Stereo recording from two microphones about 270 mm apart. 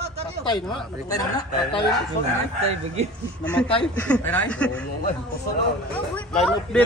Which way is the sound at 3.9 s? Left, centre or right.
Centre.